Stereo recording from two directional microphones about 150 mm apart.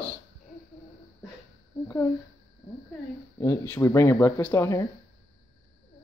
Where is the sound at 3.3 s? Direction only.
15° left (ahead or behind).